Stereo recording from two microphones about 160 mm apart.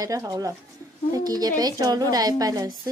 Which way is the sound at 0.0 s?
20° right (ahead or behind).